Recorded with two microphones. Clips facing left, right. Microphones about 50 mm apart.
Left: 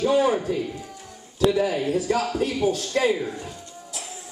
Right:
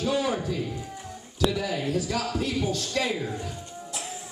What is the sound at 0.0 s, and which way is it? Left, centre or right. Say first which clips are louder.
A man's voice: left 6 dB; left.